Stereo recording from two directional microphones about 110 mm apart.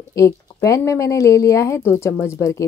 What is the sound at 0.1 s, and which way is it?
Speech, 30° left (ahead or behind).